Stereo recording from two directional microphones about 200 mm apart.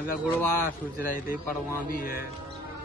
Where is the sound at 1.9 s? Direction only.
45° left (ahead or behind).